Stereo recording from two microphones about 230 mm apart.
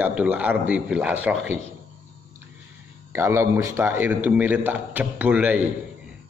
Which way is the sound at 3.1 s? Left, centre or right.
Centre.